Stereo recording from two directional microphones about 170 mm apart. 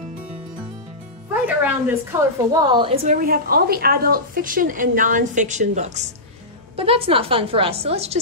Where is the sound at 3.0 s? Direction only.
55° right (ahead or behind).